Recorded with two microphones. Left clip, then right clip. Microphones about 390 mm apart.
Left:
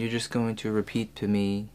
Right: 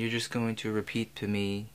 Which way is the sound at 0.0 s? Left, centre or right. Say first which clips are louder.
Left 2 dB; centre.